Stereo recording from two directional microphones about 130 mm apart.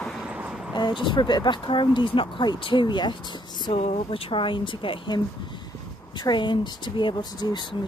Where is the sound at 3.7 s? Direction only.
55° left (ahead or behind).